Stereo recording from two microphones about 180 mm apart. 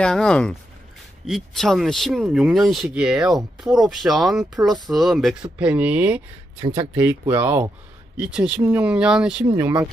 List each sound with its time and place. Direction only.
0.0 s speech: 5° left (ahead or behind)
6.6 s speech: 30° right (ahead or behind)
7.0 s speech: 10° right (ahead or behind)